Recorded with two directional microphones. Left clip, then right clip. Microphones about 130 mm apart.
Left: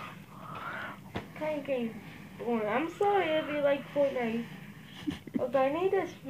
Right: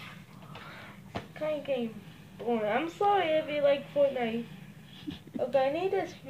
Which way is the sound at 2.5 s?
25° right (ahead or behind).